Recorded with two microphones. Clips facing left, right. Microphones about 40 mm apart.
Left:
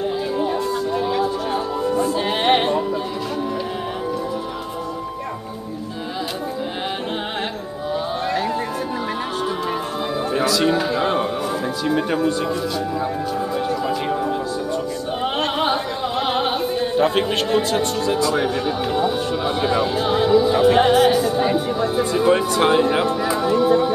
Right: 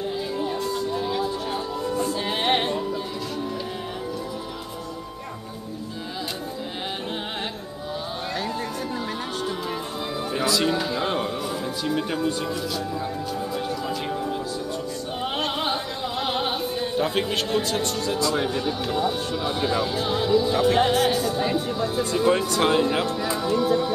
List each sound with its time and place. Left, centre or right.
0.4 s music: centre
10.6 s a sound: centre
11.8 s music: centre
13.6 s music: centre
15.2 s opera: centre
18.1 s speech: centre